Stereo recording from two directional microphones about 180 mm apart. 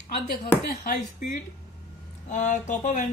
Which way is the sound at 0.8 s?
50° left (ahead or behind).